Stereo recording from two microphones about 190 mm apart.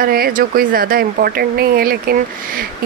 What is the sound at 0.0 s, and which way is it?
Speech, 50° right (ahead or behind).